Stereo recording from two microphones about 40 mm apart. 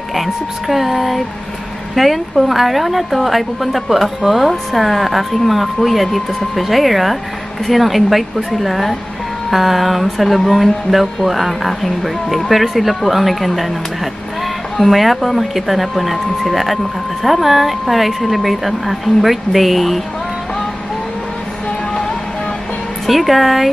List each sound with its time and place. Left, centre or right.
0.1 s a woman's voice: centre
14.8 s a woman's voice: centre
23.0 s a woman's voice: centre